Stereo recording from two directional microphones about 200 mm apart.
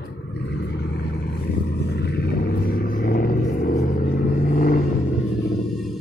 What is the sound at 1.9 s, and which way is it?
Vehicle, 55° left (ahead or behind).